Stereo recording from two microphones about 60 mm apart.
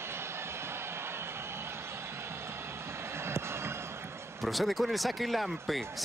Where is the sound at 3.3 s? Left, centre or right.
Right.